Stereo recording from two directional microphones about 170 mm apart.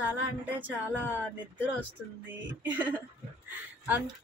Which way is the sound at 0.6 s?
10° right (ahead or behind).